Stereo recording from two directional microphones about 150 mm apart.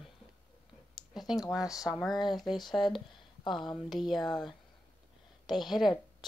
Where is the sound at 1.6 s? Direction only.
25° left (ahead or behind).